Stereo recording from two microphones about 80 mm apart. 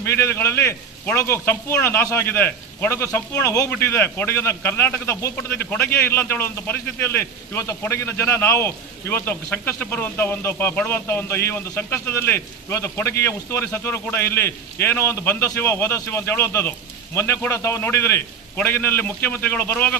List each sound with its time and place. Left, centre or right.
0.0 s a man's voice: left
3.8 s a man's voice: left
13.7 s a man's voice: left